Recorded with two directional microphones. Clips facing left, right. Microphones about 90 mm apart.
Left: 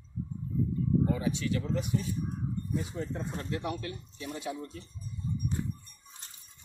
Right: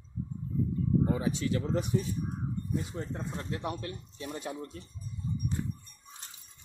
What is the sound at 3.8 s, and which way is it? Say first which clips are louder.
Speech: even; 45° right (ahead or behind).